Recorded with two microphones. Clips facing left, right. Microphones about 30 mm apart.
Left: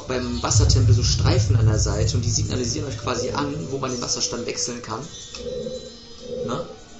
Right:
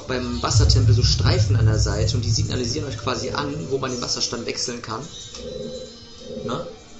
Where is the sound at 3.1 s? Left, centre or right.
Right.